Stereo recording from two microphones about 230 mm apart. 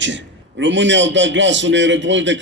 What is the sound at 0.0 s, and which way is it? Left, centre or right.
A man's voice, right.